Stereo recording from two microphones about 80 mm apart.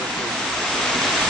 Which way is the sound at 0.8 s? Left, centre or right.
Centre.